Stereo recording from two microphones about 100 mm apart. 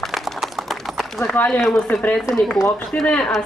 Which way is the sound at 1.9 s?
15° left (ahead or behind).